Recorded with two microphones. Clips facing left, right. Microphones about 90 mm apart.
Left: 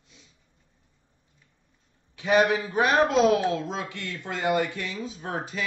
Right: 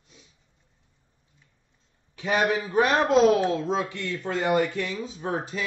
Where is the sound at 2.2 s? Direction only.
35° right (ahead or behind).